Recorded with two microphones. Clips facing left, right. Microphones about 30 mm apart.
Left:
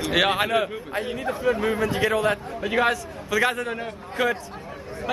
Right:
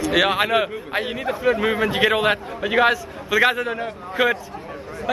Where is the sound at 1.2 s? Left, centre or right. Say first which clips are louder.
Right 3 dB; right.